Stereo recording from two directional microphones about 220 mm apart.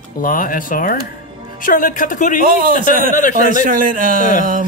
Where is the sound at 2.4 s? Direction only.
40° right (ahead or behind).